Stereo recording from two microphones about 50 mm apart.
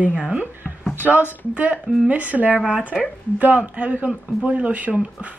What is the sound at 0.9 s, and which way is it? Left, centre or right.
Speech, right.